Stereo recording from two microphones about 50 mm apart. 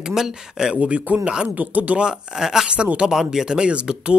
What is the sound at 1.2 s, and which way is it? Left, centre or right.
Speech, centre.